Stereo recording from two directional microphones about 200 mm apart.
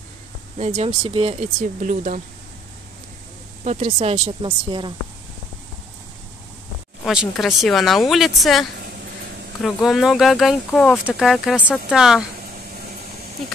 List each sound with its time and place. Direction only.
0.6 s speech: 30° right (ahead or behind)
3.6 s speech: 30° right (ahead or behind)
7.1 s speech: centre (ahead or behind)